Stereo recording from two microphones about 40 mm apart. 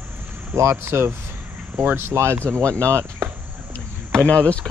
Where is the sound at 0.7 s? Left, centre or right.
Right.